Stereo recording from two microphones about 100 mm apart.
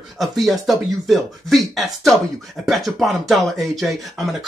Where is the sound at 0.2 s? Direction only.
Centre (ahead or behind).